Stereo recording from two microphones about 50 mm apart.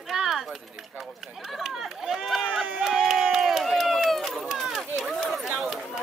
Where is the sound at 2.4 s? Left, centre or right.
Centre.